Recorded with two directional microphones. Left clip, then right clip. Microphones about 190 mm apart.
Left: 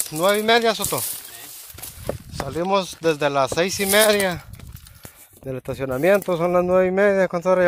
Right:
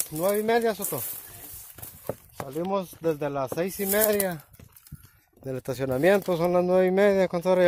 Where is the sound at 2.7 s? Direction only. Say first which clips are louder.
Left 7 dB; 15° left (ahead or behind).